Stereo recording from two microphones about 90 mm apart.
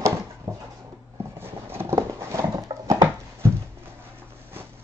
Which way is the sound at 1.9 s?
40° right (ahead or behind).